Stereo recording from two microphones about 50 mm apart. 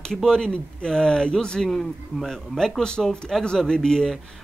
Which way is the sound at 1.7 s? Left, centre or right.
Centre.